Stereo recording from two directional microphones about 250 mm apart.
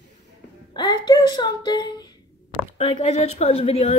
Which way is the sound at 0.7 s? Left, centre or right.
Centre.